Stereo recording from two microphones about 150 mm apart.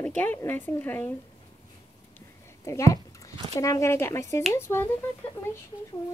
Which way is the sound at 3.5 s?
20° left (ahead or behind).